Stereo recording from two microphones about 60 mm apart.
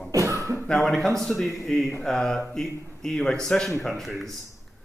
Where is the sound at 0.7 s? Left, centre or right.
Centre.